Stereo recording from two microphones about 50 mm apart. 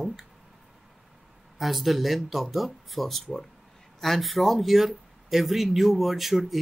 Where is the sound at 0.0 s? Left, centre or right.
Centre.